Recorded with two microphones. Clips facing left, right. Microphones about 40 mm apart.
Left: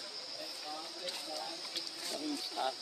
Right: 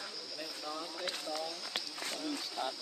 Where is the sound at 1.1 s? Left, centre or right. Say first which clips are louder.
Right 3 dB; right.